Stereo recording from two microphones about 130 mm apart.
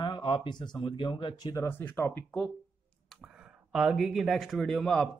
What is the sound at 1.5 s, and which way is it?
Speech, 15° left (ahead or behind).